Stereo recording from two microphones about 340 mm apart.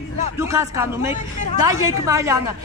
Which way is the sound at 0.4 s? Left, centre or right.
Centre.